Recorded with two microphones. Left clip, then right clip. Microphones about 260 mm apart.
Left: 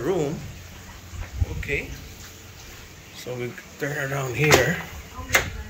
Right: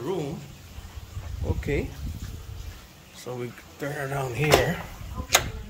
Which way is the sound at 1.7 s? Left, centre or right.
Centre.